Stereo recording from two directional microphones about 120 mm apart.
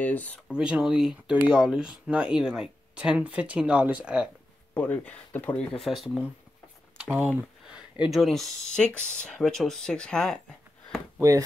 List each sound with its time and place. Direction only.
0.0 s speech: 15° left (ahead or behind)
0.5 s speech: 10° right (ahead or behind)
4.7 s speech: 10° left (ahead or behind)
7.0 s a sound: 15° right (ahead or behind)
8.0 s speech: centre (ahead or behind)
11.1 s speech: 25° right (ahead or behind)